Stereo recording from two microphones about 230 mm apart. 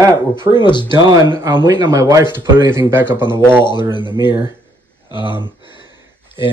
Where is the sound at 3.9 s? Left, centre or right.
Centre.